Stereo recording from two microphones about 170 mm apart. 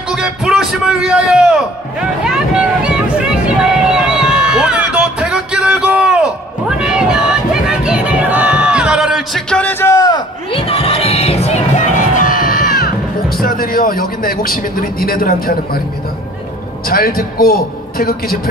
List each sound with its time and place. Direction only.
0.1 s a man's voice: 5° right (ahead or behind)
3.9 s a sound: 5° right (ahead or behind)
6.8 s crowd: 5° right (ahead or behind); by 15.8 s 60° left (ahead or behind)
16.8 s a man's voice: 60° left (ahead or behind)